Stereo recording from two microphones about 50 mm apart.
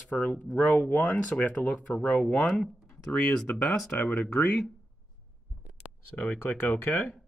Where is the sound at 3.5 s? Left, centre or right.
Left.